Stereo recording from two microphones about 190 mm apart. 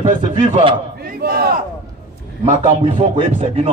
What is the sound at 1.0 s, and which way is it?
Battle cry, 55° right (ahead or behind).